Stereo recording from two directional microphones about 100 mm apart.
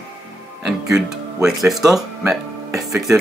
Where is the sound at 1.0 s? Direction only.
Centre (ahead or behind).